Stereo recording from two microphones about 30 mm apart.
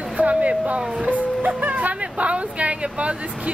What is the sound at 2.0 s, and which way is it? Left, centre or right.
Speech, right.